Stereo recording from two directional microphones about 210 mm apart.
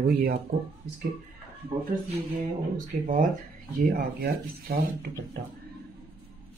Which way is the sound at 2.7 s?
40° right (ahead or behind).